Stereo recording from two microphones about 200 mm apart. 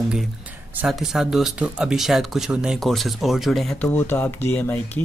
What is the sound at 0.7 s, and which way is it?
Speech, centre (ahead or behind).